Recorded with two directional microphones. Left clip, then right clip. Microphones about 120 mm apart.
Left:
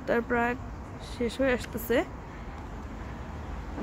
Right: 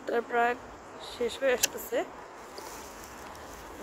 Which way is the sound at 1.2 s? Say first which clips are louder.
Even; 25° left (ahead or behind).